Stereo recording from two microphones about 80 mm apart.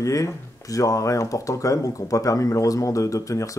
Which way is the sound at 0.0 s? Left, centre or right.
Left.